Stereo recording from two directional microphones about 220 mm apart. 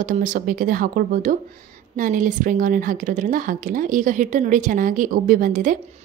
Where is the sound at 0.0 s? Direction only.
35° right (ahead or behind).